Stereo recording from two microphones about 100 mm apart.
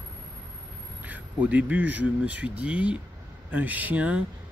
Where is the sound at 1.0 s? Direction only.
15° right (ahead or behind).